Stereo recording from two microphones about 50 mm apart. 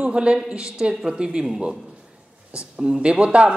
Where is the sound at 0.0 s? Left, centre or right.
Centre.